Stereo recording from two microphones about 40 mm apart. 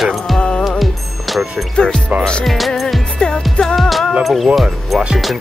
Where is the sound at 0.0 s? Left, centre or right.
Centre.